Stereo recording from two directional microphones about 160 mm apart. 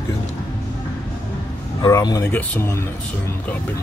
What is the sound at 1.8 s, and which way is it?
Speech, 20° left (ahead or behind).